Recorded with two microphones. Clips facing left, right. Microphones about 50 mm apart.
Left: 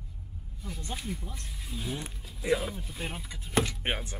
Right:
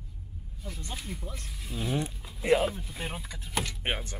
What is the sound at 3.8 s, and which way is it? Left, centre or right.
Speech, centre.